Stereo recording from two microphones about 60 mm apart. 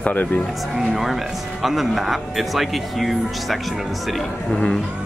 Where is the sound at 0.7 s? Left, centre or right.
Centre.